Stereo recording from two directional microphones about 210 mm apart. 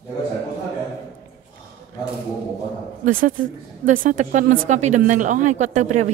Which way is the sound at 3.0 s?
40° right (ahead or behind).